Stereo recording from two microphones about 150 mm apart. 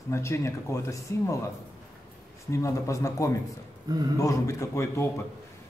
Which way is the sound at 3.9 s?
25° right (ahead or behind).